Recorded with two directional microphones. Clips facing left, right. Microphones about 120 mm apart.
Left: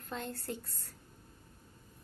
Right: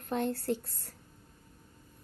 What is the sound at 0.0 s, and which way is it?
Speech, 60° right (ahead or behind).